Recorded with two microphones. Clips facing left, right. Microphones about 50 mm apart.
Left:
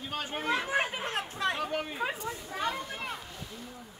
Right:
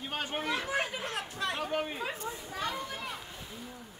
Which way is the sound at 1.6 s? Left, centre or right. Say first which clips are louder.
Even; centre.